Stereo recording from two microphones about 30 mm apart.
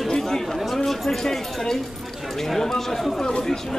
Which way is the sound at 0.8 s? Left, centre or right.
Centre.